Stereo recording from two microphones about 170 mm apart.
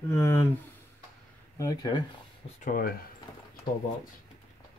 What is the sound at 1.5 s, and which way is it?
Speech, 20° left (ahead or behind).